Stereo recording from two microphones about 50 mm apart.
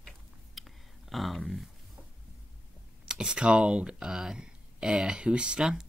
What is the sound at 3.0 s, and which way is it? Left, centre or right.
Speech, centre.